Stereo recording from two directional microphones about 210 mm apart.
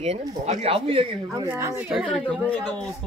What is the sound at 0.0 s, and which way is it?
Speech, 35° right (ahead or behind).